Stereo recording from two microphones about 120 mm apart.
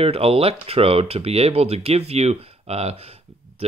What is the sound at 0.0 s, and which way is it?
Speech, 55° right (ahead or behind).